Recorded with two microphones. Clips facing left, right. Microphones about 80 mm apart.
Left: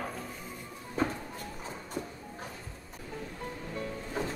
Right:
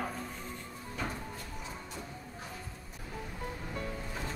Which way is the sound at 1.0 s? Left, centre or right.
Left.